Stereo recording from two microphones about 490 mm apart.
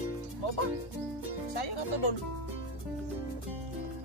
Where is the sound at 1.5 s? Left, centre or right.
Left.